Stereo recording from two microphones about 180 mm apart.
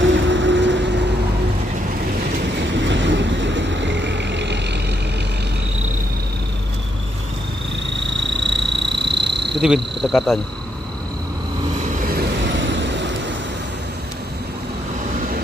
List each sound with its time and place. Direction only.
0.0 s vehicle: 90° right
2.8 s vehicle: 90° right; by 4.7 s 75° right (ahead or behind)
8.3 s a sound: 80° right
9.6 s cricket: centre (ahead or behind)
12.0 s vehicle: 55° right (ahead or behind)
12.4 s vehicle: 90° right